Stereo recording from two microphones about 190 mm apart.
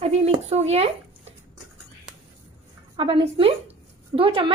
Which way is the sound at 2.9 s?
25° right (ahead or behind).